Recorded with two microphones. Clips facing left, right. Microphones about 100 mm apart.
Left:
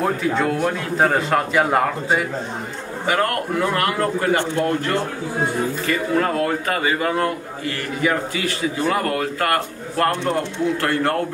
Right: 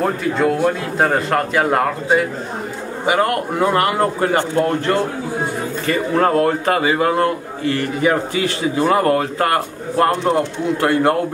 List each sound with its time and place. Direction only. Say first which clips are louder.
0.0 s a man's voice: right 2 dB; centre (ahead or behind)
3.1 s a man's voice: right 3 dB; 15° right (ahead or behind); by 4.4 s 30° right (ahead or behind)
5.9 s a man's voice: right 6 dB; 35° right (ahead or behind); by 11.1 s 15° right (ahead or behind)